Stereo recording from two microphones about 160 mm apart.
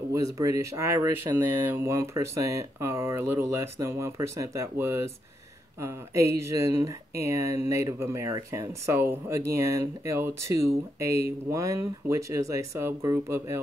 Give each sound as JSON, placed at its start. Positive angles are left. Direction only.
{"t": 0.1, "sound": "speech", "side_deg": -20}